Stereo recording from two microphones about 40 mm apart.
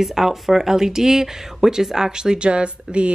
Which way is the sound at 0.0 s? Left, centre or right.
Centre.